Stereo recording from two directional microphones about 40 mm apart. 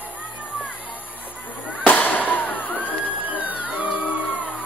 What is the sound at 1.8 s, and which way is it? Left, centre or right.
Music, left.